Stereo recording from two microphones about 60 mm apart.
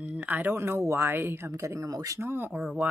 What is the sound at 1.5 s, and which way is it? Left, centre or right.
Speech, right.